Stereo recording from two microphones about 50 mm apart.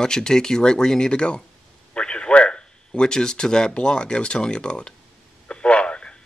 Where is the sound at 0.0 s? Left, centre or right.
Centre.